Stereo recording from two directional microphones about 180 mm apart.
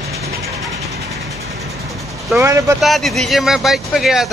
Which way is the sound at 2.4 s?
15° right (ahead or behind).